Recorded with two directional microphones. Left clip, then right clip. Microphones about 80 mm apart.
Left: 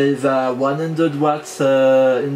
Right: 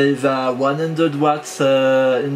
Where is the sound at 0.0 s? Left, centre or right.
Right.